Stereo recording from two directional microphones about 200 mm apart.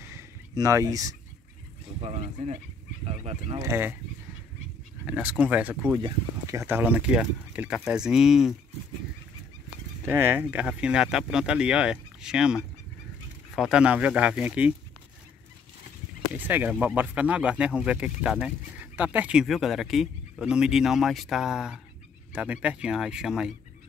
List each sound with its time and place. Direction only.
0.1 s a sound: 15° right (ahead or behind)
2.0 s speech: 30° right (ahead or behind)
3.6 s speech: 10° right (ahead or behind)
5.0 s speech: 5° right (ahead or behind)
5.9 s speech: 20° right (ahead or behind); by 8.5 s centre (ahead or behind)
10.0 s speech: 10° right (ahead or behind)
16.3 s speech: 10° right (ahead or behind)